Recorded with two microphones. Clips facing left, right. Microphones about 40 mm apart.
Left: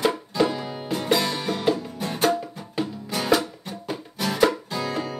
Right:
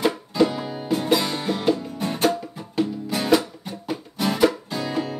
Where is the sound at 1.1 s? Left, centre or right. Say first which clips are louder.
Left 1 dB; centre.